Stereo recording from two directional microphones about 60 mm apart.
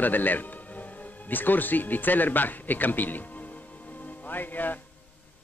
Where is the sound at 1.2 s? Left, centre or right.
Left.